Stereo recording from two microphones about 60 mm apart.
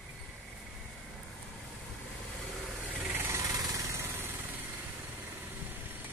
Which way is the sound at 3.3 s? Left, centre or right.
Right.